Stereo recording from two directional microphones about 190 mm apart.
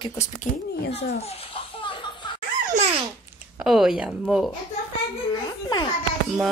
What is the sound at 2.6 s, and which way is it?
Babbling, 40° right (ahead or behind).